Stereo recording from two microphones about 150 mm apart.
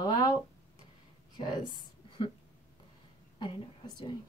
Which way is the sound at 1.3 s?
30° left (ahead or behind).